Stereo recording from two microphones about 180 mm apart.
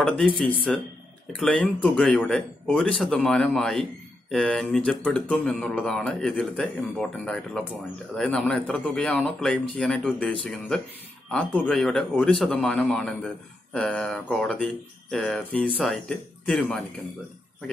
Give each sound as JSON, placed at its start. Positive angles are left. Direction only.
{"t": 0.7, "sound": "speech", "side_deg": 0}